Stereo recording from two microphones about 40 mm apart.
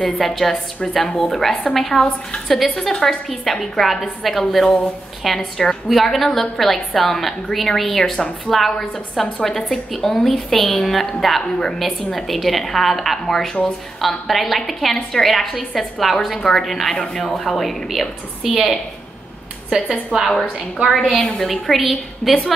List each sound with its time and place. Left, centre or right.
0.0 s a woman's voice: centre
16.3 s a woman's voice: centre
16.6 s a woman's voice: centre
16.9 s a woman's voice: centre
19.7 s a woman's voice: centre
21.0 s a woman's voice: centre